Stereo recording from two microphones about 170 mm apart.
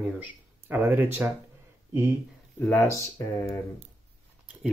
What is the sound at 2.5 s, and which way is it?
Speech, 10° left (ahead or behind).